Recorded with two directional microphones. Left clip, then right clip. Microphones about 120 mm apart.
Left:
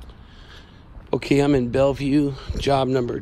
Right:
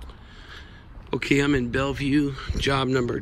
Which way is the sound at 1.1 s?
45° left (ahead or behind).